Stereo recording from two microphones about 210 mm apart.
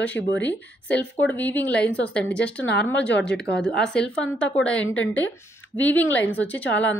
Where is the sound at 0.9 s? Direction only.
5° left (ahead or behind).